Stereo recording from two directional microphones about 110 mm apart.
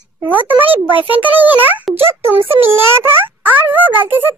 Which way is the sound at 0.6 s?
50° right (ahead or behind).